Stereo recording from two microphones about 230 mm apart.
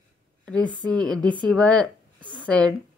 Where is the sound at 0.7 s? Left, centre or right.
Centre.